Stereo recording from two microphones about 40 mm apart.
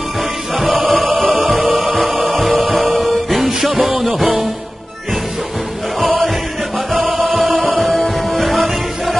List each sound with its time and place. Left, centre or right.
0.8 s chant: centre
1.6 s music: centre
5.9 s music: centre